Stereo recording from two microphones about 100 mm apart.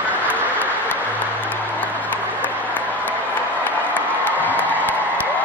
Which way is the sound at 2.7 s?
15° left (ahead or behind).